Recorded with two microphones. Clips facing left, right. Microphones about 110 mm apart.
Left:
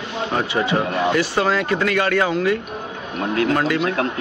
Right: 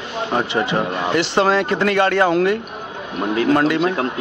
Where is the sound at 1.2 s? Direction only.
25° right (ahead or behind).